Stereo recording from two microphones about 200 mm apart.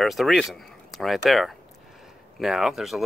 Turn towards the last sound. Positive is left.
turn(degrees=0)  # may be behind; listen again after turning